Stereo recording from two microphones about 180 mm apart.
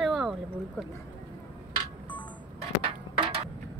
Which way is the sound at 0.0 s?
Centre (ahead or behind).